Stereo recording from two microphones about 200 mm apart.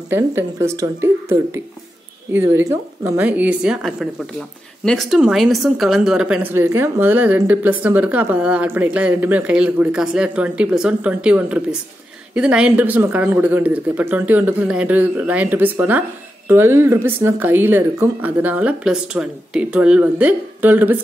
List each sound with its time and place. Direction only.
0.1 s a woman's voice: 10° right (ahead or behind)